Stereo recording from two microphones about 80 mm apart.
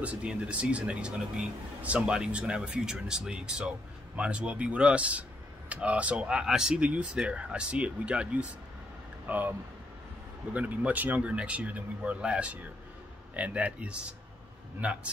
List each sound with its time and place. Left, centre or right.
0.0 s a man's voice: centre
10.5 s a man's voice: centre